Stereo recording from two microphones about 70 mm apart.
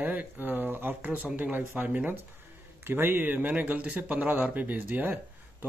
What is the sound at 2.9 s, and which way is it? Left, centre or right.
Speech, right.